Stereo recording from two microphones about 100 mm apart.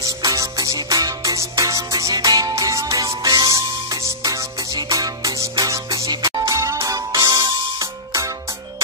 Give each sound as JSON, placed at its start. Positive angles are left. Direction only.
{"t": 0.0, "sound": "music", "side_deg": -35}